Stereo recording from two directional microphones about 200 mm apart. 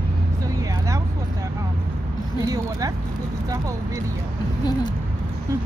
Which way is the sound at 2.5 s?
15° right (ahead or behind).